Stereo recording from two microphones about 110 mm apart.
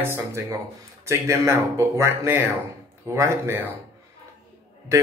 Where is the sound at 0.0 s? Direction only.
25° right (ahead or behind).